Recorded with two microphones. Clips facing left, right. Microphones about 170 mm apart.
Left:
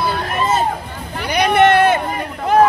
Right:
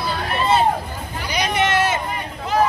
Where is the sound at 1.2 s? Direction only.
60° left (ahead or behind).